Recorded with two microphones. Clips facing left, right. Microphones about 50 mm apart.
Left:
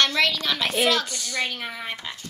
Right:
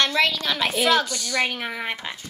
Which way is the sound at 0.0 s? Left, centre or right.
Centre.